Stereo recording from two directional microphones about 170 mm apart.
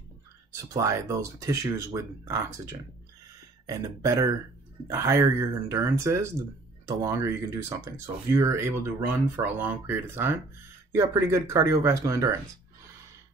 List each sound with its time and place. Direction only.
0.7 s speech: 15° right (ahead or behind)
3.6 s speech: 20° right (ahead or behind)